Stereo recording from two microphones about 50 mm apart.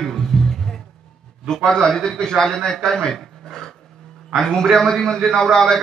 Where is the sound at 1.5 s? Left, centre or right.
Centre.